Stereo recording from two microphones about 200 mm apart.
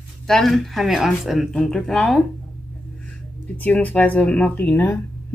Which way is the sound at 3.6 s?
10° left (ahead or behind).